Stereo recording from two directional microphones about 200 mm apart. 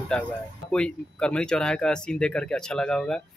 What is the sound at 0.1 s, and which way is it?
Speech, 5° left (ahead or behind).